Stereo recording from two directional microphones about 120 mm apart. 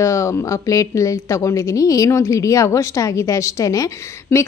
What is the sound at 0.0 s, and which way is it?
Speech, 25° left (ahead or behind).